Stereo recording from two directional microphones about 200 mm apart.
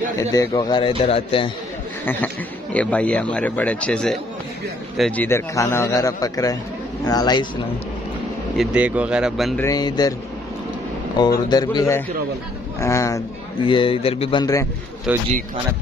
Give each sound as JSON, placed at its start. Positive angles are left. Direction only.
{"t": 0.2, "sound": "a man's voice", "side_deg": 15}
{"t": 2.0, "sound": "a man's voice", "side_deg": 10}
{"t": 8.5, "sound": "speech", "side_deg": -5}
{"t": 9.6, "sound": "a man's voice", "side_deg": 20}
{"t": 11.1, "sound": "a man's voice", "side_deg": 20}
{"t": 15.1, "sound": "speech", "side_deg": -5}